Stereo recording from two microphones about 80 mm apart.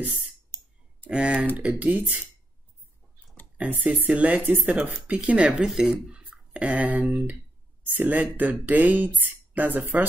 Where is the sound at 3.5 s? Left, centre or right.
Right.